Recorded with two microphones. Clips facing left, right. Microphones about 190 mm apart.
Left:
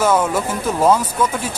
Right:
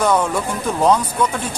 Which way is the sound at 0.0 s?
5° left (ahead or behind).